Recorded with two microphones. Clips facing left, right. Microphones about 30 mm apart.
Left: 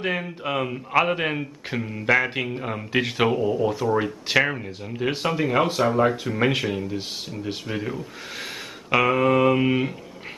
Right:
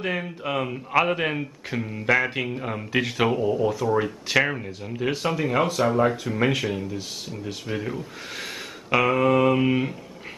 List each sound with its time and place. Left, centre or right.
0.0 s a man's voice: centre
6.9 s speech: left
7.6 s speech: centre
8.9 s speech: centre